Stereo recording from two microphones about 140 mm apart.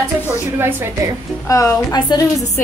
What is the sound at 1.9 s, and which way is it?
Speech, 35° left (ahead or behind).